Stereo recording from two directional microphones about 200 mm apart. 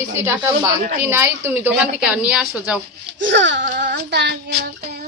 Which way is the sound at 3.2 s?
65° right (ahead or behind).